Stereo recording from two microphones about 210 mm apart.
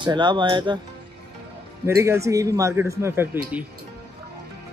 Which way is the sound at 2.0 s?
15° right (ahead or behind).